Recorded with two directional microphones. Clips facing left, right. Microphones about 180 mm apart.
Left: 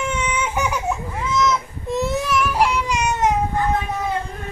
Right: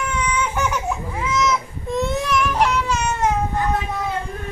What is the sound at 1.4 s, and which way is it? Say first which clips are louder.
Baby cry: left 2 dB; 5° left (ahead or behind).